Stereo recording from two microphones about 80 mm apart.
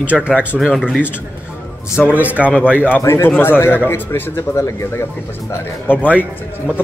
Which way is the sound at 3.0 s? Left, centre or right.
Left.